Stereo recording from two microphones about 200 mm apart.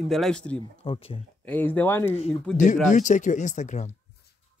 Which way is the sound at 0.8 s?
25° left (ahead or behind).